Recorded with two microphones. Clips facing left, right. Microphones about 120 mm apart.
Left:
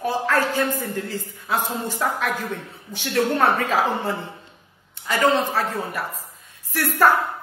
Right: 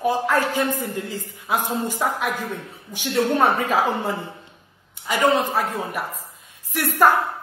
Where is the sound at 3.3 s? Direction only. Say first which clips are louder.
Right 1 dB; 15° right (ahead or behind).